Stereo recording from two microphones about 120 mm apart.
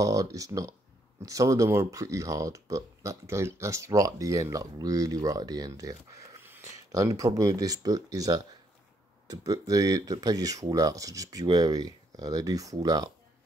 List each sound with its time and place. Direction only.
0.0 s speech: 30° right (ahead or behind)